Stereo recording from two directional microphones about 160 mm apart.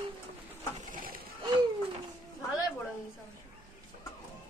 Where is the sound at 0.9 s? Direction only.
65° right (ahead or behind).